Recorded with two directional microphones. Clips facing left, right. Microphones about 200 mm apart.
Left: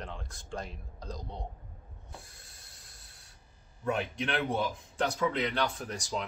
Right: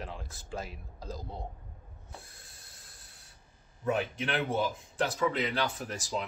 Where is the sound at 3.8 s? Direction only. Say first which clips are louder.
Right 1 dB; 5° right (ahead or behind).